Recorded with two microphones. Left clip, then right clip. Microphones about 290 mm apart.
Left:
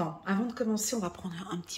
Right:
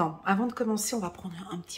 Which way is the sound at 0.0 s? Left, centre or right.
Centre.